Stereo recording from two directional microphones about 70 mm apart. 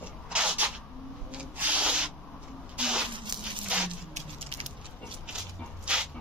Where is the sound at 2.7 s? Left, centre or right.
Centre.